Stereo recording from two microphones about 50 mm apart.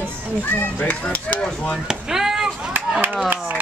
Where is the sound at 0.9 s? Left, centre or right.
Left.